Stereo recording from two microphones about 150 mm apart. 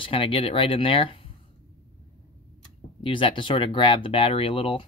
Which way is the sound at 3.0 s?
35° left (ahead or behind).